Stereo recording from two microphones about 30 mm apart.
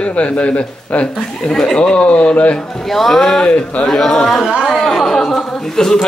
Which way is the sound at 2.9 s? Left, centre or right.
Centre.